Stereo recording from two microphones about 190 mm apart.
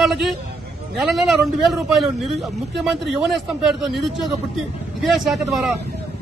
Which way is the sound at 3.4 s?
Centre (ahead or behind).